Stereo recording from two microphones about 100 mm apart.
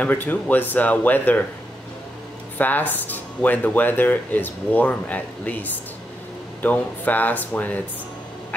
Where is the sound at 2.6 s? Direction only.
15° left (ahead or behind).